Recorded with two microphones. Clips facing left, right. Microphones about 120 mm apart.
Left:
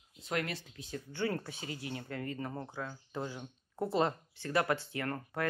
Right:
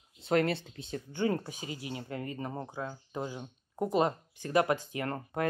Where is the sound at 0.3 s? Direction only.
30° right (ahead or behind).